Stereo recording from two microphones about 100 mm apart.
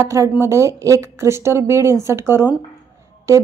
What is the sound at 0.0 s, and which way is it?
Speech, 30° right (ahead or behind).